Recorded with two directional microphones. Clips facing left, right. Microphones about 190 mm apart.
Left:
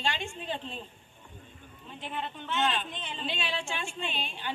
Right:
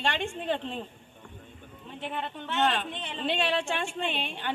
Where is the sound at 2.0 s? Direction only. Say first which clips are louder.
Right 2 dB; 65° right (ahead or behind).